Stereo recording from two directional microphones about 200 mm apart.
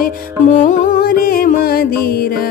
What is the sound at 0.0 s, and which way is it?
Music, 40° left (ahead or behind).